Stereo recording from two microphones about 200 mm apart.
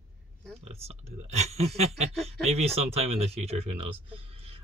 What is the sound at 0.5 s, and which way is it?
Speech, 30° right (ahead or behind).